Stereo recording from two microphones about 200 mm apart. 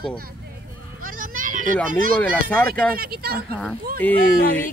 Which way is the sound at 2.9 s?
50° right (ahead or behind).